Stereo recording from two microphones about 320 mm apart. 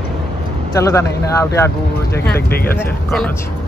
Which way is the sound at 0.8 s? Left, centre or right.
Centre.